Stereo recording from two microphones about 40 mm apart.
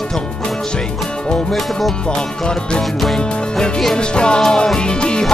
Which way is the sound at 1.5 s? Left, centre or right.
Centre.